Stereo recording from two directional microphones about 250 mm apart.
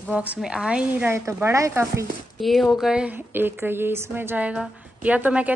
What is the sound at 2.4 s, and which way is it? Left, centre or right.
Speech, centre.